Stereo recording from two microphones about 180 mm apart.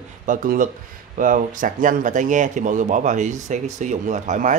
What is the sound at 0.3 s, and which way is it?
Speech, 50° right (ahead or behind).